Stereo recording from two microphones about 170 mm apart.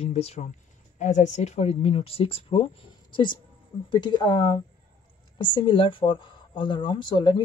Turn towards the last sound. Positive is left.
turn(degrees=25)  # may be behind; listen again after turning